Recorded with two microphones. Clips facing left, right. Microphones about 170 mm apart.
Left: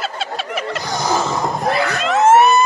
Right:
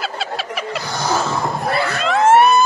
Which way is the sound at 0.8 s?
15° left (ahead or behind).